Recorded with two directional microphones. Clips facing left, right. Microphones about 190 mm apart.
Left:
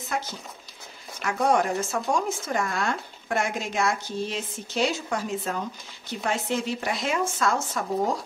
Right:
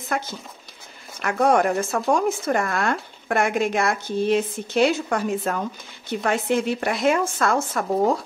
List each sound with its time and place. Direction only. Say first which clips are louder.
0.1 s speech: right 3 dB; 60° right (ahead or behind)